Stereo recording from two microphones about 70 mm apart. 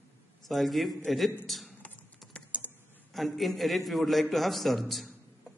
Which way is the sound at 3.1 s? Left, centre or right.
Centre.